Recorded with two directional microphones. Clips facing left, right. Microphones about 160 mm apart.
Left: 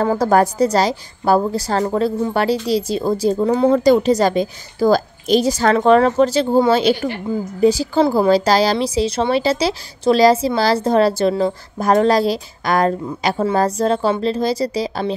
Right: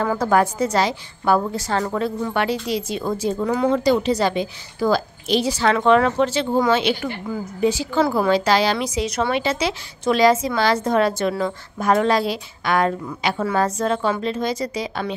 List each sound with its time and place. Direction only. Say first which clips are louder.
0.0 s a woman's voice: left 4 dB; 35° left (ahead or behind)
3.8 s a woman's voice: left 5 dB; 45° left (ahead or behind)